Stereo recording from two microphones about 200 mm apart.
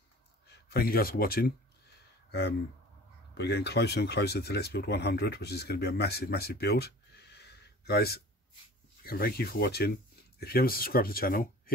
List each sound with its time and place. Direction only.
0.5 s speech: 50° left (ahead or behind)
3.3 s speech: 55° left (ahead or behind)